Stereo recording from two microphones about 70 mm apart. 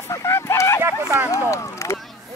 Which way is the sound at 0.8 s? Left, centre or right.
Right.